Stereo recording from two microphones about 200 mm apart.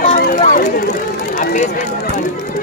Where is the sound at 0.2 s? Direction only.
45° left (ahead or behind).